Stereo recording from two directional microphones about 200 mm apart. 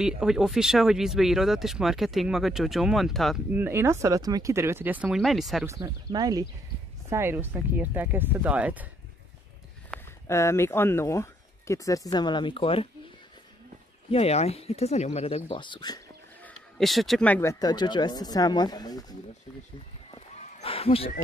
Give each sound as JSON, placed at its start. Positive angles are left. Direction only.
{"t": 0.0, "sound": "speech", "side_deg": 0}
{"t": 5.7, "sound": "speech", "side_deg": -20}
{"t": 10.2, "sound": "speech", "side_deg": 15}
{"t": 14.1, "sound": "speech", "side_deg": 30}
{"t": 16.4, "sound": "speech", "side_deg": 0}
{"t": 20.3, "sound": "a sound", "side_deg": 30}